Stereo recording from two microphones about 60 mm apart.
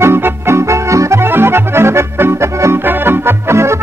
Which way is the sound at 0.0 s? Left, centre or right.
Right.